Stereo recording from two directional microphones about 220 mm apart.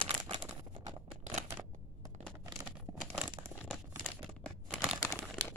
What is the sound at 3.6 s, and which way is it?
Crumpling, 5° left (ahead or behind).